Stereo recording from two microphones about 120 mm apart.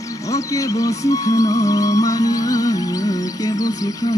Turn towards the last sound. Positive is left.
turn(degrees=30)  # may be behind; listen again after turning